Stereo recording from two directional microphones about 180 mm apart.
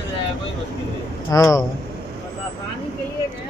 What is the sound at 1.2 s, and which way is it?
Speech, 20° left (ahead or behind).